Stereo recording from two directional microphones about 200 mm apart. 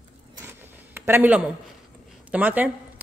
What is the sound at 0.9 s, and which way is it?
Speech, 10° right (ahead or behind).